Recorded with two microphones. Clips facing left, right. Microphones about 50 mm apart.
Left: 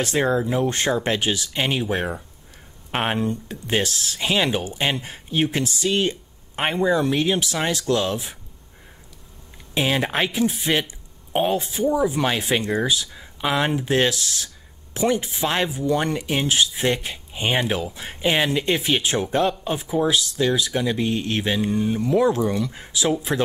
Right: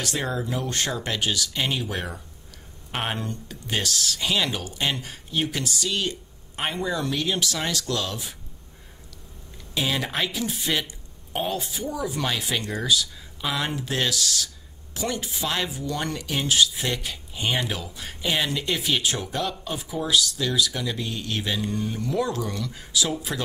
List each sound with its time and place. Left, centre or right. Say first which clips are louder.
0.0 s speech: left 7 dB; left
9.8 s speech: left 5 dB; left